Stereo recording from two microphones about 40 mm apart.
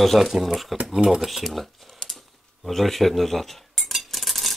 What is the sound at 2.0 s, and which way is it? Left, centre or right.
Cutlery, centre.